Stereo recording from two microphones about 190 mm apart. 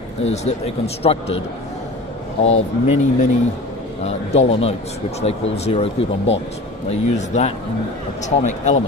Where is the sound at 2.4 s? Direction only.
35° left (ahead or behind).